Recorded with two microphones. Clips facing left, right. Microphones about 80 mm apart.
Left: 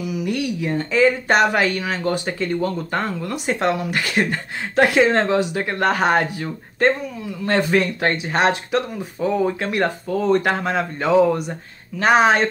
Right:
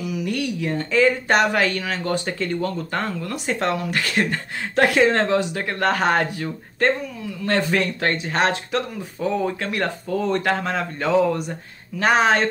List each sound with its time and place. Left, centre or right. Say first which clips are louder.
0.2 s speech: left 2 dB; centre